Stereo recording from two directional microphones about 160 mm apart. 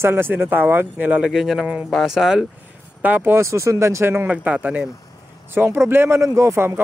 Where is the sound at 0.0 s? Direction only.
15° right (ahead or behind).